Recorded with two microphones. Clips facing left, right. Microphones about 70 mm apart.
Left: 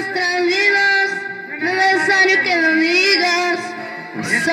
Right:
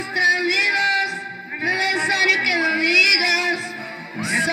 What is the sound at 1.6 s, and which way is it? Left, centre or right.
Music, left.